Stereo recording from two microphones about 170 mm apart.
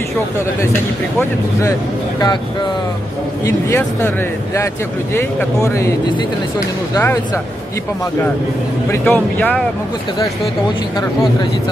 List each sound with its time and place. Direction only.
3.4 s speech: 15° left (ahead or behind)
5.1 s speech: 15° left (ahead or behind)
9.0 s speech: 10° left (ahead or behind)